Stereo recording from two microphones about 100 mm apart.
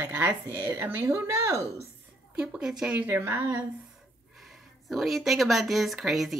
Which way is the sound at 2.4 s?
10° right (ahead or behind).